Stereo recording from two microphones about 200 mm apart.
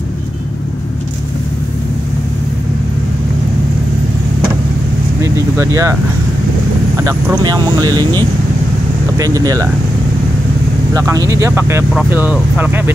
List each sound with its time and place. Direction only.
5.2 s vehicle: 15° right (ahead or behind)
7.1 s speech: 20° right (ahead or behind)
9.2 s speech: 15° right (ahead or behind)
10.9 s speech: 15° right (ahead or behind)